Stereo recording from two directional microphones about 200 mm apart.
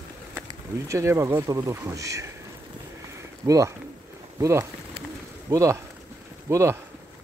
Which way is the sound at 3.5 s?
15° right (ahead or behind).